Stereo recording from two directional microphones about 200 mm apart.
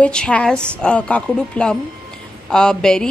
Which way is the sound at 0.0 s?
5° left (ahead or behind).